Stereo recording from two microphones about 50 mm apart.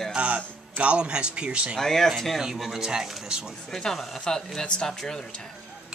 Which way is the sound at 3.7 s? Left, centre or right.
Centre.